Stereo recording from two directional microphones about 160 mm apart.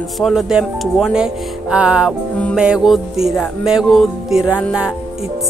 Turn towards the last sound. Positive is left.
turn(degrees=-5)  # may be behind; listen again after turning